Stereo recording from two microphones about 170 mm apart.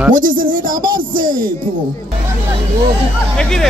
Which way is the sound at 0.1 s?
55° right (ahead or behind).